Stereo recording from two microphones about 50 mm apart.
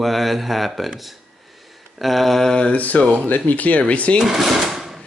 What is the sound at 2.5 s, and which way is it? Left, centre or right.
Speech, left.